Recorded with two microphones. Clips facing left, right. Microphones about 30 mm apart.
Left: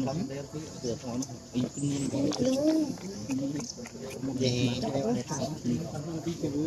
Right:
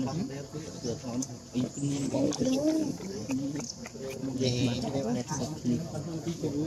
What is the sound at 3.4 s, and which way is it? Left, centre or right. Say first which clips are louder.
Speech: left 1 dB; centre.